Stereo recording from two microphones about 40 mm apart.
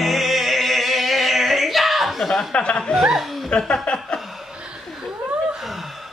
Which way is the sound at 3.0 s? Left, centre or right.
Centre.